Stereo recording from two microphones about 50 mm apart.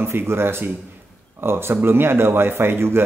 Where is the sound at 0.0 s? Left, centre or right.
Right.